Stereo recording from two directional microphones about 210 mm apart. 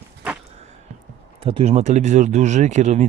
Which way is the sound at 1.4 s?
30° right (ahead or behind).